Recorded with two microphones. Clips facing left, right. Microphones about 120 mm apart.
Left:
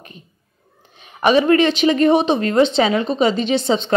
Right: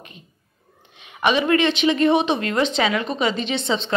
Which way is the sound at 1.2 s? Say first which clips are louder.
Left 5 dB; 40° left (ahead or behind).